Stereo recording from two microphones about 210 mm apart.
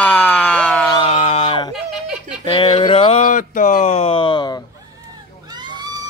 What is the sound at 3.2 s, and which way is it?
Speech, 40° left (ahead or behind).